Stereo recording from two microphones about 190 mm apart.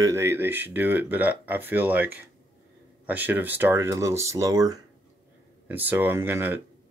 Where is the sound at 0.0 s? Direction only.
15° right (ahead or behind).